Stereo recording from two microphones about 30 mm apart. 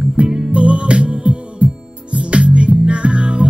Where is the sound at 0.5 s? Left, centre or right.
Right.